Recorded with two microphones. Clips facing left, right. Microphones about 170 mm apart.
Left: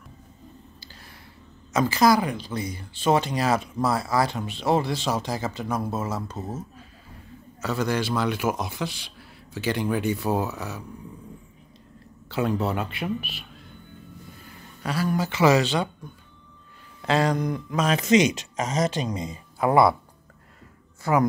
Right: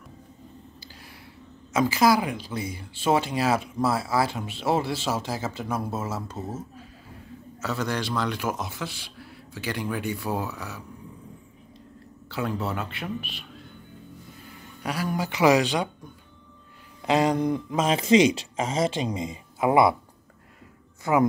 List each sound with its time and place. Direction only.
1.7 s speech: 5° right (ahead or behind)
7.6 s a man's voice: centre (ahead or behind); by 10.8 s 20° left (ahead or behind)
12.3 s speech: 20° left (ahead or behind)
14.8 s speech: 15° right (ahead or behind)
17.0 s speech: 15° right (ahead or behind)
21.0 s speech: 20° right (ahead or behind)